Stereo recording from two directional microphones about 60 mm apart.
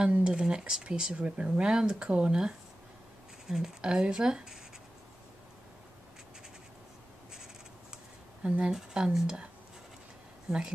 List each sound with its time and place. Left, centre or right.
0.0 s speech: centre
8.4 s speech: centre